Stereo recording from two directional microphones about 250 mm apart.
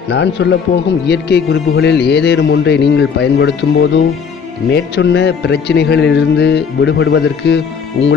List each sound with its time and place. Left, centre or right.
0.1 s speech: left